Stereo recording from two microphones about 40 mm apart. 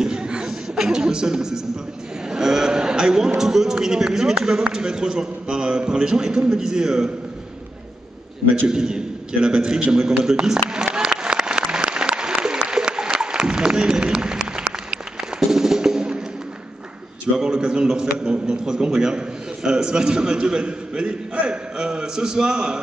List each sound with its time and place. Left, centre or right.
0.0 s chuckle: centre
0.5 s beatboxing: centre
2.3 s a sound: centre
3.3 s a man's voice: centre
8.6 s a man's voice: centre
11.0 s applause: centre
17.4 s a man's voice: centre